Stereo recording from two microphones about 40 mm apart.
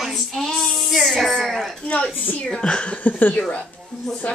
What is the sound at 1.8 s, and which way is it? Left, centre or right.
Speech, left.